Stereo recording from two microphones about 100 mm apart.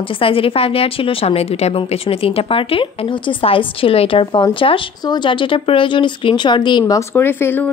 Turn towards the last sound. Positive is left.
turn(degrees=20)  # may be behind; listen again after turning